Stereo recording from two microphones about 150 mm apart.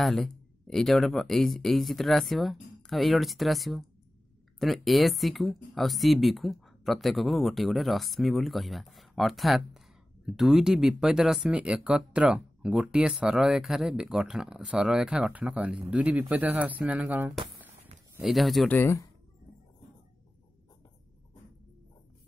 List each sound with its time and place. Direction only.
0.0 s speech: centre (ahead or behind)
18.2 s speech: centre (ahead or behind)
18.8 s speech: 20° left (ahead or behind)